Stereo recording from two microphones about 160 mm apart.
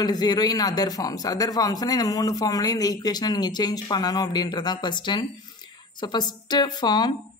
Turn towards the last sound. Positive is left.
turn(degrees=25)  # may be behind; listen again after turning